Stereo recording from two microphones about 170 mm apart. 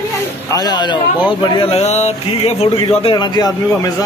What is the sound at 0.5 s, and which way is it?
A man's voice, 25° left (ahead or behind).